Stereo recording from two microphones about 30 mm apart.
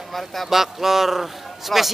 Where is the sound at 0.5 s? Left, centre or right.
Centre.